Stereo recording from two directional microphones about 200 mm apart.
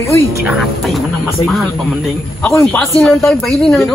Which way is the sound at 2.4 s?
15° left (ahead or behind).